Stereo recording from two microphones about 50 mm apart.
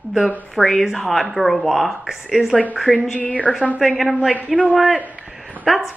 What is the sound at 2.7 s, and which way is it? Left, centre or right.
Speech, centre.